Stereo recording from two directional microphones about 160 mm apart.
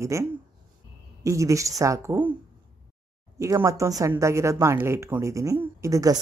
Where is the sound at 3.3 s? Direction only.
20° right (ahead or behind).